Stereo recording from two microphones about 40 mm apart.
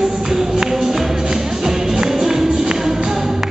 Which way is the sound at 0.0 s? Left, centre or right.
Centre.